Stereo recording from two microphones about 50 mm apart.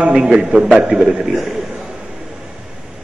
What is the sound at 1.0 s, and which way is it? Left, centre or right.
Speech, centre.